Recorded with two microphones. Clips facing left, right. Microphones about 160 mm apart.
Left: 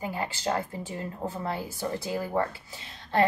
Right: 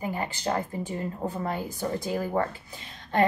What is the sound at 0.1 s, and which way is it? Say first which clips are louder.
A woman's voice: left 1 dB; 15° right (ahead or behind).